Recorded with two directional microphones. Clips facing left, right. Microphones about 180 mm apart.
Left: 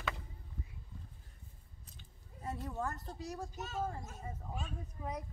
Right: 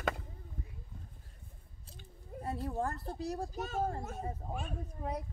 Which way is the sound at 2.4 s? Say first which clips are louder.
Right 4 dB; 35° right (ahead or behind).